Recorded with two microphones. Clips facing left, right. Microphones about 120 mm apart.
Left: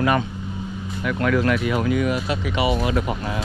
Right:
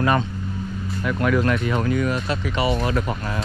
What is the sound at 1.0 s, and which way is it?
Speech, 20° right (ahead or behind).